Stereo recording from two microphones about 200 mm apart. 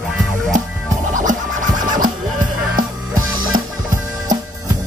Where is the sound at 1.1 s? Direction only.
40° right (ahead or behind).